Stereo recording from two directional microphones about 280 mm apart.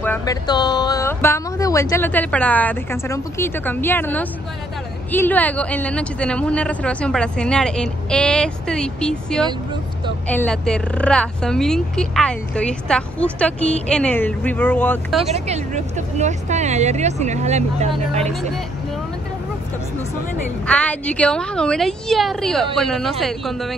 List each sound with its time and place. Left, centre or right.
0.0 s a woman's voice: centre
15.2 s speech: right
20.6 s a woman's voice: centre